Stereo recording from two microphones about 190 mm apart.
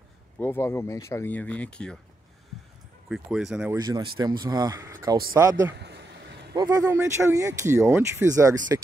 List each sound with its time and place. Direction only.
0.4 s speech: 10° left (ahead or behind)
3.1 s speech: 5° right (ahead or behind)
3.7 s speech: 20° right (ahead or behind)
5.8 s a sound: 60° right (ahead or behind)
6.5 s speech: 20° right (ahead or behind)